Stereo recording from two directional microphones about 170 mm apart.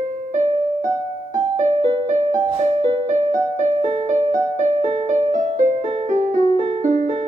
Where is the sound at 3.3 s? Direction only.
45° right (ahead or behind).